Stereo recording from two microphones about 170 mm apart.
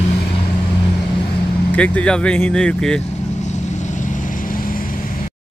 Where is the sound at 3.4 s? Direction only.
45° left (ahead or behind).